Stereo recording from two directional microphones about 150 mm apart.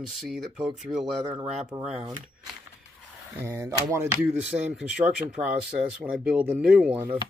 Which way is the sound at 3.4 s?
15° right (ahead or behind).